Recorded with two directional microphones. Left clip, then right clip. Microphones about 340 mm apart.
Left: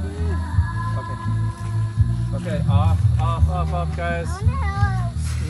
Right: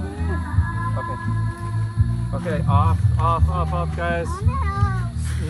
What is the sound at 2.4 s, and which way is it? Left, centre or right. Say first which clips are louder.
Speech: right 4 dB; centre.